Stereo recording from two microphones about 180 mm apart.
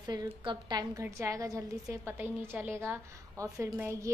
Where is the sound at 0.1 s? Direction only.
25° right (ahead or behind).